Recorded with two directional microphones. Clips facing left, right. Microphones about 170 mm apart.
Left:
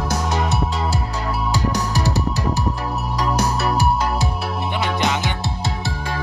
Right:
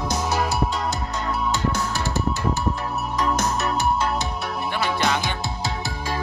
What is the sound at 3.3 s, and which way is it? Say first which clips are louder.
Music: left 3 dB; 35° left (ahead or behind).